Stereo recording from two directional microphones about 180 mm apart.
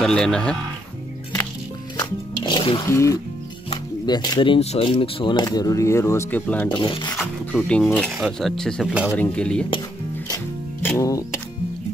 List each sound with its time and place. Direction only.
0.0 s speech: 5° left (ahead or behind)
2.0 s music: 25° left (ahead or behind)
2.9 s speech: 15° left (ahead or behind)
6.7 s speech: 25° left (ahead or behind)
7.2 s speech: 5° left (ahead or behind)
9.1 s speech: 10° left (ahead or behind)
10.1 s music: 10° left (ahead or behind)